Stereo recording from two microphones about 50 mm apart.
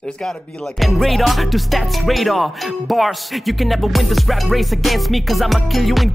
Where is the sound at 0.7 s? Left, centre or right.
Centre.